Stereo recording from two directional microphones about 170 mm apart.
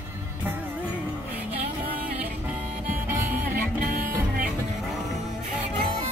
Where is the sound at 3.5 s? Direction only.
60° right (ahead or behind).